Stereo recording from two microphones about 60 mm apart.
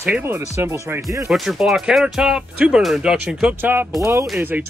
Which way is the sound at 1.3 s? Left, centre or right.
Centre.